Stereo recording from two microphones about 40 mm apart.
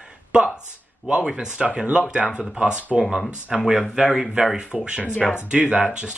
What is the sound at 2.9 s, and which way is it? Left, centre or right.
Speech, centre.